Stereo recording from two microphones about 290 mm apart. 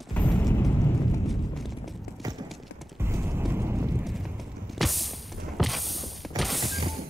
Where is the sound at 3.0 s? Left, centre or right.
Centre.